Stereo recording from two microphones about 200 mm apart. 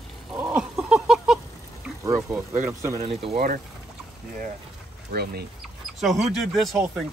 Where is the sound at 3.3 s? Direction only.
45° right (ahead or behind).